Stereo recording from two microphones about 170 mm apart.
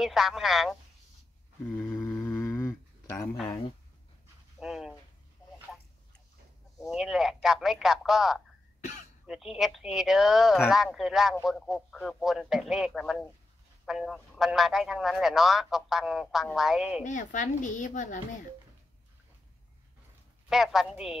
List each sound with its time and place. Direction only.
0.0 s speech: centre (ahead or behind)
1.8 s a sound: 10° left (ahead or behind)
4.6 s dog: centre (ahead or behind)
6.8 s a man's voice: centre (ahead or behind)
17.0 s a woman's voice: 50° left (ahead or behind)
20.4 s speech: centre (ahead or behind)